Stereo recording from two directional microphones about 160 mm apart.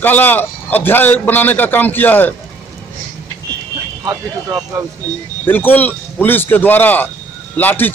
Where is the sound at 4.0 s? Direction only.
20° right (ahead or behind).